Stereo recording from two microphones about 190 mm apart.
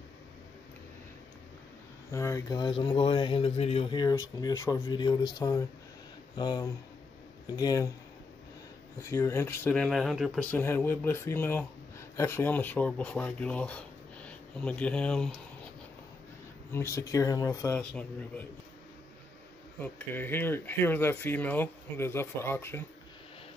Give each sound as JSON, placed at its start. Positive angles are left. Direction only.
{"t": 2.0, "sound": "speech", "side_deg": 15}
{"t": 9.1, "sound": "speech", "side_deg": 15}
{"t": 10.6, "sound": "speech", "side_deg": 10}
{"t": 16.7, "sound": "speech", "side_deg": 15}
{"t": 19.8, "sound": "speech", "side_deg": 10}